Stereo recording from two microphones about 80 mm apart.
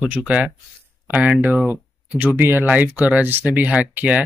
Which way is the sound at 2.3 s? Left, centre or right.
Right.